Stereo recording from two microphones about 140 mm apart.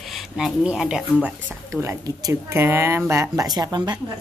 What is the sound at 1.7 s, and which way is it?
Speech, 20° right (ahead or behind).